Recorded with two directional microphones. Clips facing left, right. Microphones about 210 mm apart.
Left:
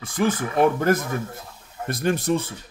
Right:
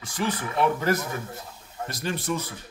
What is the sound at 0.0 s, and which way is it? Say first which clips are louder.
Speech: left 6 dB; 50° left (ahead or behind).